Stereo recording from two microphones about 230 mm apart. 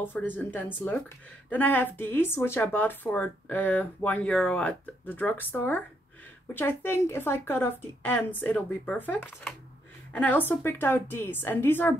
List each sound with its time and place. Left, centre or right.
0.0 s speech: centre